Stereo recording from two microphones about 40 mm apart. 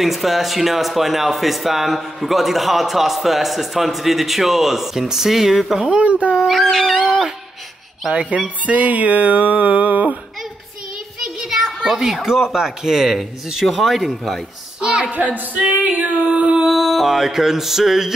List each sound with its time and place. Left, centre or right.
0.0 s speech: centre
5.8 s speech: right
6.0 s speech: right
6.3 s dog: centre
6.6 s speech: centre
8.1 s speech: right
8.6 s music: right
11.1 s child singing: centre
11.9 s speech: centre
14.8 s a woman's voice: right
15.0 s singing: right
16.6 s music: centre